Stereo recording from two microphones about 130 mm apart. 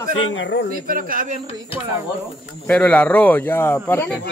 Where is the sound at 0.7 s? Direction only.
90° right.